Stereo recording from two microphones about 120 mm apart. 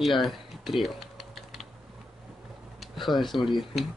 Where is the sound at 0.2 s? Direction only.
Centre (ahead or behind).